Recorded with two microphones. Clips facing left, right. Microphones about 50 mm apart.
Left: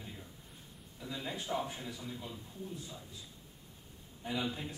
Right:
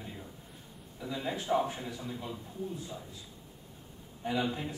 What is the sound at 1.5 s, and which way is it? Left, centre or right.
Speech, centre.